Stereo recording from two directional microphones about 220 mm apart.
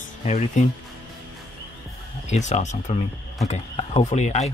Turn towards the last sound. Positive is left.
turn(degrees=30)  # may be behind; listen again after turning